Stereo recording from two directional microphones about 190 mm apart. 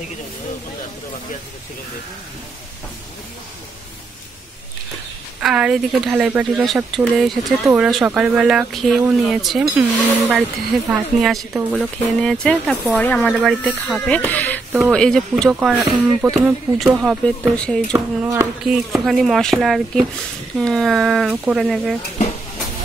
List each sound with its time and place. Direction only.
5.4 s speech: 5° right (ahead or behind)
15.8 s speech: 15° right (ahead or behind)
16.3 s speech: centre (ahead or behind)
17.9 s speech: 10° right (ahead or behind)